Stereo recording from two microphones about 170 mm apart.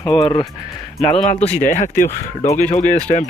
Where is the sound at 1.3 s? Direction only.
40° left (ahead or behind).